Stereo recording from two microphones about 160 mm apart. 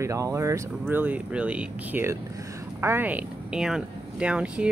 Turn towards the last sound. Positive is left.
turn(degrees=-5)  # may be behind; listen again after turning